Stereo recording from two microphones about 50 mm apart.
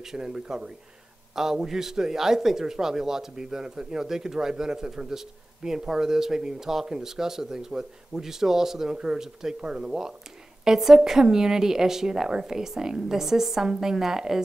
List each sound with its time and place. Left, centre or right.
0.0 s speech: centre